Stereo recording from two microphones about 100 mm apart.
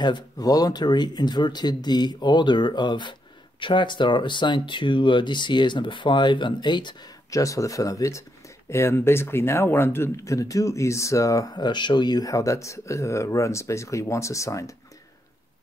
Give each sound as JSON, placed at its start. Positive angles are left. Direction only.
{"t": 0.0, "sound": "speech", "side_deg": 40}
{"t": 7.2, "sound": "speech", "side_deg": 35}